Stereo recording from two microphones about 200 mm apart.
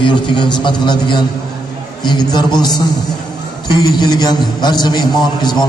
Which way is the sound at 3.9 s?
20° left (ahead or behind).